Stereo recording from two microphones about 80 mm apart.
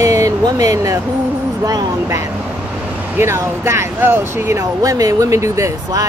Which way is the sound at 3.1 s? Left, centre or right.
Right.